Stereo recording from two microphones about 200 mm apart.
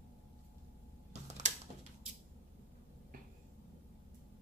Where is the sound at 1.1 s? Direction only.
35° right (ahead or behind).